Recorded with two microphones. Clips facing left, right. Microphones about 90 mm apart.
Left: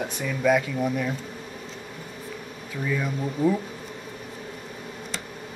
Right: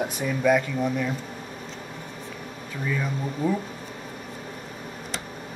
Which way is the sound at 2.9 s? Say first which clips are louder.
Left 1 dB; centre (ahead or behind).